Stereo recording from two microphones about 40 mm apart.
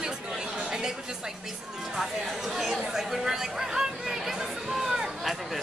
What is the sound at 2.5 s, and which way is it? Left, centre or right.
Chatter, centre.